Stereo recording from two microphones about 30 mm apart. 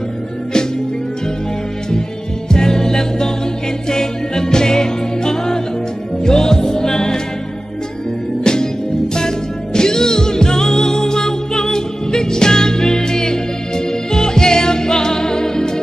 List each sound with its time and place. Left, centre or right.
2.5 s music: left
8.5 s music: left
9.8 s music: left